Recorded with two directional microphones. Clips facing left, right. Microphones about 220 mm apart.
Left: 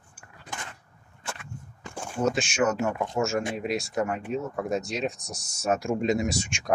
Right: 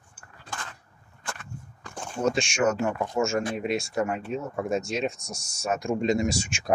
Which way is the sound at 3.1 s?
5° left (ahead or behind).